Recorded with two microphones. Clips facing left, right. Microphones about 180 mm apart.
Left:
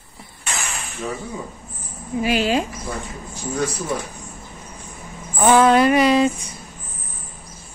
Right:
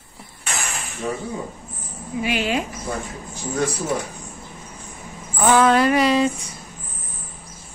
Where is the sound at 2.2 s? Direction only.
35° left (ahead or behind).